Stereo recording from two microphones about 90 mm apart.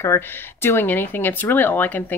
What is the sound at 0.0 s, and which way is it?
A woman's voice, 30° left (ahead or behind).